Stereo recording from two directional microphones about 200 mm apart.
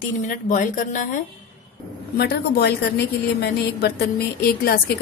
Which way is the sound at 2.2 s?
55° left (ahead or behind).